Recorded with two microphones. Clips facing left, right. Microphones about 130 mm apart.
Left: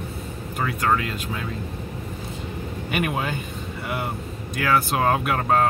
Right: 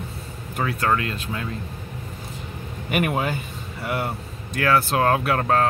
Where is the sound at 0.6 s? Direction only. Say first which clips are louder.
Even; centre (ahead or behind).